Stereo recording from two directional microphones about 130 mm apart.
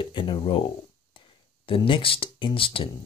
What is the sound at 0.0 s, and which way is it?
Speech, 40° left (ahead or behind).